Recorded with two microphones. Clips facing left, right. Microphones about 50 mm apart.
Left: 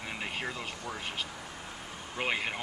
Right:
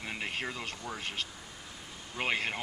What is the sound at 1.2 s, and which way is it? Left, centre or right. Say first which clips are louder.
Vehicle: left 5 dB; left.